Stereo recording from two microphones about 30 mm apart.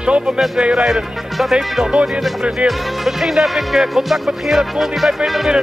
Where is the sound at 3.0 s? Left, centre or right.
Centre.